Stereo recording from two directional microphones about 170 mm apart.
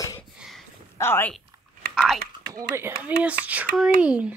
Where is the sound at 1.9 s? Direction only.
Centre (ahead or behind).